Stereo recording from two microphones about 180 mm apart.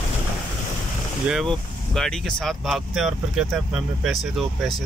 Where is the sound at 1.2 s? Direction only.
Centre (ahead or behind).